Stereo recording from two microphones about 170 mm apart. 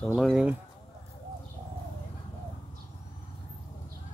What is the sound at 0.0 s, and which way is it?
Speech, centre (ahead or behind).